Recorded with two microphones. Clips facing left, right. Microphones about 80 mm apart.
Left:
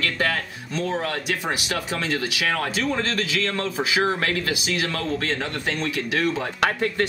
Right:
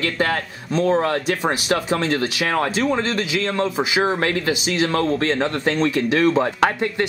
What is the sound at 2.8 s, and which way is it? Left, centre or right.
Speech, centre.